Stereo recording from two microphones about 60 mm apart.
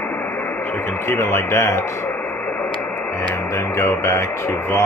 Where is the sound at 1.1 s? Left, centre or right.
Left.